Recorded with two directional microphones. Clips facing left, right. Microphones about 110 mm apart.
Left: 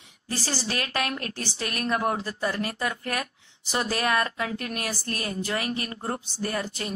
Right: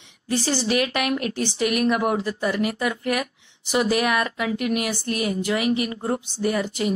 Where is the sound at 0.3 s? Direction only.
20° right (ahead or behind).